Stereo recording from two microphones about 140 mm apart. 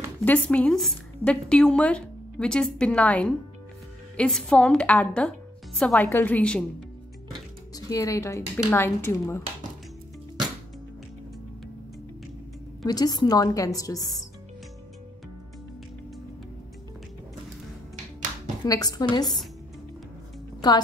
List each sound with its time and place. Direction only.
0.2 s a woman's voice: 10° left (ahead or behind)
7.7 s speech: 25° left (ahead or behind)
12.8 s speech: 30° left (ahead or behind)
18.7 s speech: 25° left (ahead or behind)